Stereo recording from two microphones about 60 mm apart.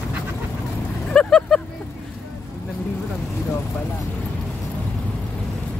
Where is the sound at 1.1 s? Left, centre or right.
Centre.